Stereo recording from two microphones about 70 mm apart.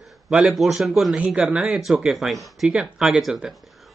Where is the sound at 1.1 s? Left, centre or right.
Centre.